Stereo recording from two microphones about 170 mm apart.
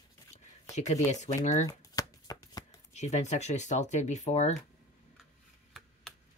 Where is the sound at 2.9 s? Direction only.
45° left (ahead or behind).